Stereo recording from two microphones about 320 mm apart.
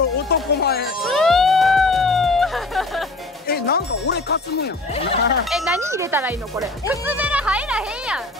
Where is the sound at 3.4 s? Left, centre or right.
Left.